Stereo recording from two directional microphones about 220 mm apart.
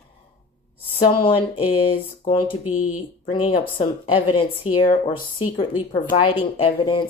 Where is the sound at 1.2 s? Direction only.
25° left (ahead or behind).